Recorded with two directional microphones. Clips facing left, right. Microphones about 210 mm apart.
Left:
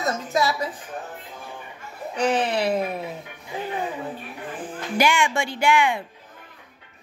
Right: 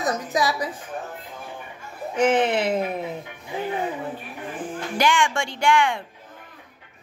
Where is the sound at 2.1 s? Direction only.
20° right (ahead or behind).